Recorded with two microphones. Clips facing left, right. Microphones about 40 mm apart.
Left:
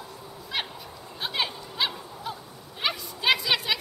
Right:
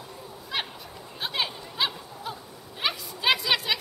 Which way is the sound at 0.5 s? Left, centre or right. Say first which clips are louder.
Even; centre.